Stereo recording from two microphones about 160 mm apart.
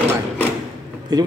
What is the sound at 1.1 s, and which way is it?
Speech, 25° right (ahead or behind).